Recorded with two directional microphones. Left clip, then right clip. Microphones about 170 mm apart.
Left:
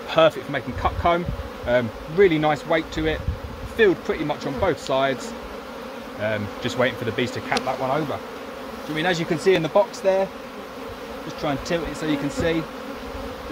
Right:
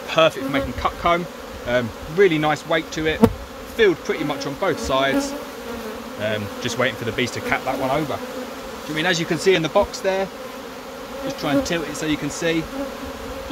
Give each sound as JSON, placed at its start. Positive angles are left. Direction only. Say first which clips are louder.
{"t": 0.1, "sound": "speech", "louder": "right 1 dB", "side_deg": 30}
{"t": 6.2, "sound": "speech", "louder": "right 1 dB", "side_deg": 30}
{"t": 8.9, "sound": "speech", "louder": "right 2 dB", "side_deg": 15}
{"t": 11.4, "sound": "speech", "louder": "right 3 dB", "side_deg": 20}